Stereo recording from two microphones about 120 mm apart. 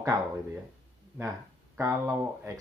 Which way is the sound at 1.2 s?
20° right (ahead or behind).